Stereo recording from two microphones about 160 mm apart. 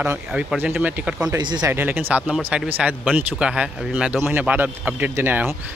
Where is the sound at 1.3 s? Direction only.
25° right (ahead or behind).